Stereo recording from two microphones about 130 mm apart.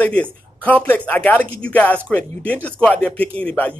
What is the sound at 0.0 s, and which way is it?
Speech, 10° left (ahead or behind).